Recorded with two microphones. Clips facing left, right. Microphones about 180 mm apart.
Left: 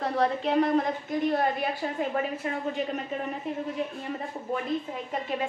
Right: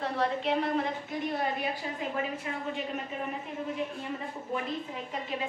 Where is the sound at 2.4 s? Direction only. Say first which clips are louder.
Left 5 dB; 45° left (ahead or behind).